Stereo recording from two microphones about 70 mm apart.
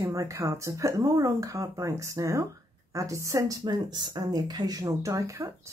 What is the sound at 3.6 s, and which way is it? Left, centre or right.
Speech, right.